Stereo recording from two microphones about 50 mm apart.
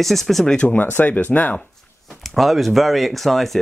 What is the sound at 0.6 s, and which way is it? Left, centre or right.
Speech, left.